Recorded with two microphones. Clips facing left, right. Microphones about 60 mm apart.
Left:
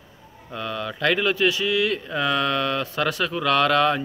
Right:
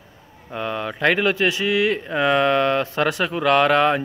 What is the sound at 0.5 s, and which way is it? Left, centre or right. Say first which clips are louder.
Speech: right 3 dB; right.